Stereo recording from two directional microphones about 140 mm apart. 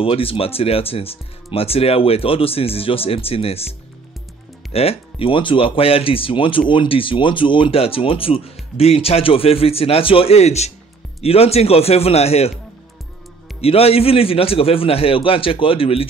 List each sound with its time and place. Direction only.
0.0 s speech: 40° left (ahead or behind)
4.7 s speech: 45° left (ahead or behind)
13.6 s speech: 45° left (ahead or behind)